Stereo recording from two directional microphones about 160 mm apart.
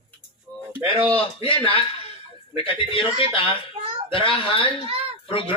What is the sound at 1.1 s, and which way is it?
A man's voice, 35° left (ahead or behind).